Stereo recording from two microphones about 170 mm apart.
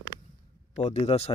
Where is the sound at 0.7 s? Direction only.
40° left (ahead or behind).